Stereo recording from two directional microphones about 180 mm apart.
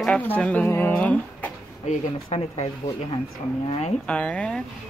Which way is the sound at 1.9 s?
35° left (ahead or behind).